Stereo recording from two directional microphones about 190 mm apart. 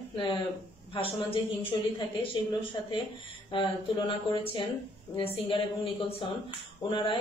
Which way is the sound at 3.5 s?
25° left (ahead or behind).